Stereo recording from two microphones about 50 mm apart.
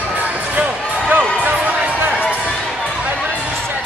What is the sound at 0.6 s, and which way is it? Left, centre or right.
Basketball bounce, right.